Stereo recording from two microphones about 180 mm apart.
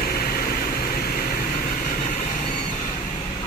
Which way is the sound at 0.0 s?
55° left (ahead or behind).